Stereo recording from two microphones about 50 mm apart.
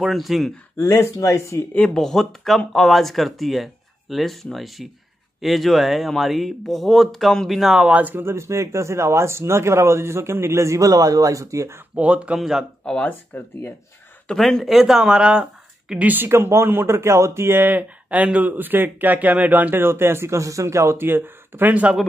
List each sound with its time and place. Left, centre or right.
0.0 s speech: centre
0.7 s speech: left
2.0 s speech: centre
7.9 s speech: right
8.2 s speech: right
8.5 s speech: right
11.9 s speech: right
12.4 s speech: centre
12.8 s speech: centre
13.1 s speech: left
14.3 s speech: centre
14.6 s speech: centre
16.0 s speech: right
16.3 s speech: right